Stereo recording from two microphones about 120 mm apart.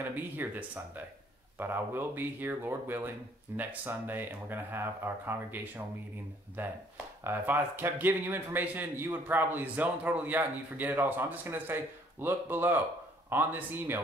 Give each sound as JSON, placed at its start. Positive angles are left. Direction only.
{"t": 0.1, "sound": "a man's voice", "side_deg": -15}